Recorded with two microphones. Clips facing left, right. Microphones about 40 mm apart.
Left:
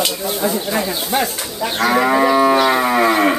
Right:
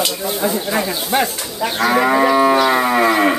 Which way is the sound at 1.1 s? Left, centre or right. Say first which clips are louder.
Right 2 dB; right.